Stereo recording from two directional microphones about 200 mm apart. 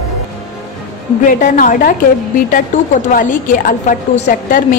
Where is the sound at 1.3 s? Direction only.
40° left (ahead or behind).